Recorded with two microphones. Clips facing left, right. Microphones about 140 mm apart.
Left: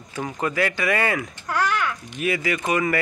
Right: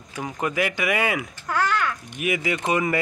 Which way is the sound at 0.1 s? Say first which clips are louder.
Left 1 dB; 15° right (ahead or behind).